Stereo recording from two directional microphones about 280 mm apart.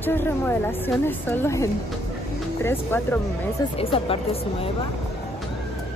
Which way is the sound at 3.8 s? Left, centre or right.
Centre.